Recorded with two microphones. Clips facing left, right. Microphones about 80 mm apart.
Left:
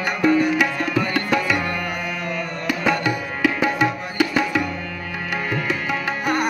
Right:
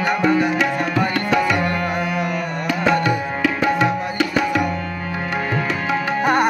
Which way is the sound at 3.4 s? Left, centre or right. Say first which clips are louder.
Right 1 dB; centre.